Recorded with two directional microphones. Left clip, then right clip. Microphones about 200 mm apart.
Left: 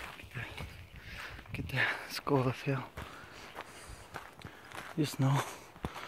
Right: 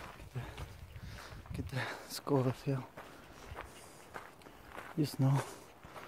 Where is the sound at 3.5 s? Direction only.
55° left (ahead or behind).